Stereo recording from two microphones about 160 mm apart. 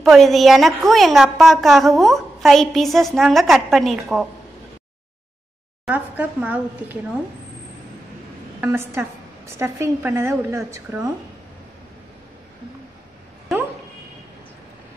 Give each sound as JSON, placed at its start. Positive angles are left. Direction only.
{"t": 0.0, "sound": "a woman's voice", "side_deg": 0}
{"t": 5.9, "sound": "a woman's voice", "side_deg": -10}
{"t": 8.5, "sound": "a woman's voice", "side_deg": -15}